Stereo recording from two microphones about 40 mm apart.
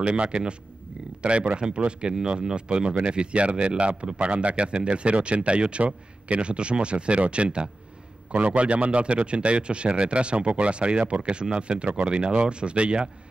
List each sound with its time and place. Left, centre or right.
0.0 s speech: right
8.3 s speech: right